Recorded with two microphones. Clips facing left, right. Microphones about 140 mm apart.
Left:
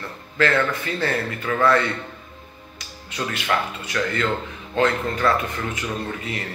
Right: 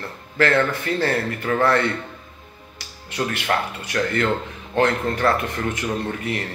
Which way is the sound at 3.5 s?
55° right (ahead or behind).